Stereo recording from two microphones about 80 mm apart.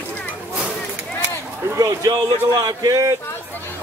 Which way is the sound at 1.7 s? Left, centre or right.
Right.